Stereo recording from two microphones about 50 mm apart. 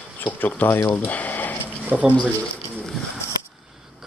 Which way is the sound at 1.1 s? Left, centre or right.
Left.